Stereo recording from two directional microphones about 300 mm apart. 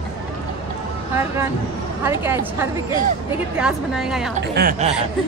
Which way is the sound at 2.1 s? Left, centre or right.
Centre.